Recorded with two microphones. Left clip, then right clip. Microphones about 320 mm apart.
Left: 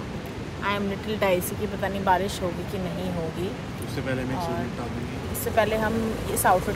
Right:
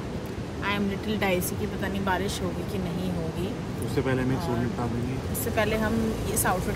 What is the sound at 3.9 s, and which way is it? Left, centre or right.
Speech, right.